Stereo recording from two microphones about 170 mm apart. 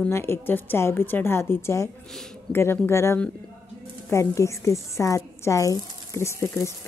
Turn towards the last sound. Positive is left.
turn(degrees=15)  # may be behind; listen again after turning